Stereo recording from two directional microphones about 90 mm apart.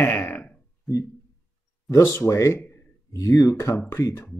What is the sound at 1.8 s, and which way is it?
Speech, 35° left (ahead or behind).